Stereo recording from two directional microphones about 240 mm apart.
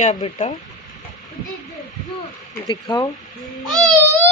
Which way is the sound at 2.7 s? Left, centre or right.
Centre.